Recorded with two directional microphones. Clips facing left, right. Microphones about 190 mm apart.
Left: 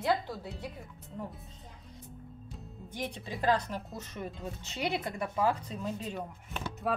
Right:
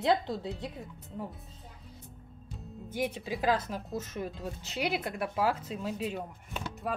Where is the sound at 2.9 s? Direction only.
5° right (ahead or behind).